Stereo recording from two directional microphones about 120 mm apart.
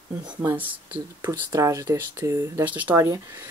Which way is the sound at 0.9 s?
35° right (ahead or behind).